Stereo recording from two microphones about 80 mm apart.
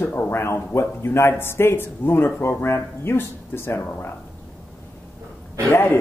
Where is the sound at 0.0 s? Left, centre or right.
Left.